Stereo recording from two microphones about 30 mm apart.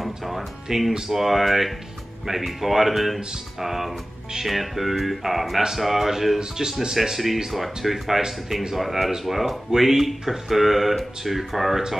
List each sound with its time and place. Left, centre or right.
0.0 s music: centre
0.9 s speech: centre
6.4 s speech: right
6.9 s speech: centre